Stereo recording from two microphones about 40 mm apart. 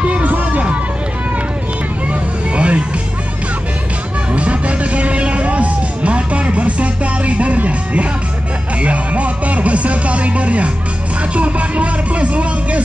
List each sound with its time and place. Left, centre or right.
0.0 s music: right
2.5 s music: right
4.3 s music: right
11.3 s speech: right